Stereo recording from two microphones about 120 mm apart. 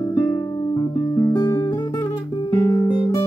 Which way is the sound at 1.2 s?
35° left (ahead or behind).